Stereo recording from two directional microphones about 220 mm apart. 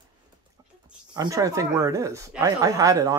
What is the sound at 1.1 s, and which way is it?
Speech, 15° right (ahead or behind).